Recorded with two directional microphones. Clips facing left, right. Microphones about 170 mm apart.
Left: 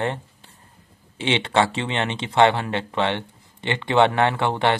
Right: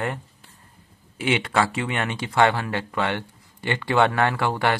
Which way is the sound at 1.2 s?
25° left (ahead or behind).